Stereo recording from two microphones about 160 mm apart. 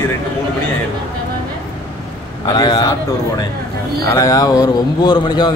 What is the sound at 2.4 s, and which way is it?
Speech, 25° left (ahead or behind).